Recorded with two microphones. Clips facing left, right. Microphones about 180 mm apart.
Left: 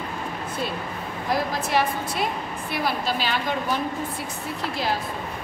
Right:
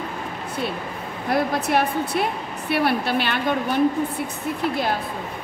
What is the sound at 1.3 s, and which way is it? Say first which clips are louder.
A woman's voice: right 3 dB; 60° right (ahead or behind).